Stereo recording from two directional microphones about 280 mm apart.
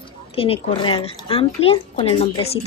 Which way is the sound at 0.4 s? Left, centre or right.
Centre.